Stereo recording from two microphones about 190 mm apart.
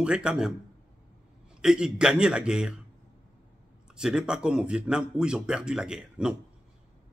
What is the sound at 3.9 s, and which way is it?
A man's voice, 5° right (ahead or behind).